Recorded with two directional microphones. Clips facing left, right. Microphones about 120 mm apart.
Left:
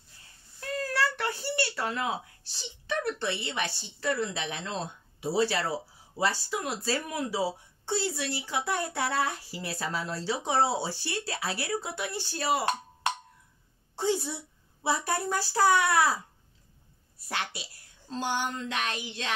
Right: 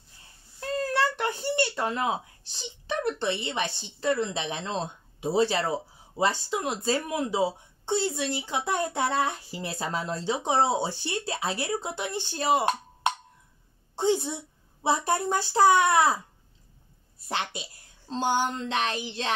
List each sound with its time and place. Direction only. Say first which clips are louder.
0.6 s a child's voice: right 3 dB; 25° right (ahead or behind)
17.3 s a woman's voice: right 3 dB; 20° right (ahead or behind)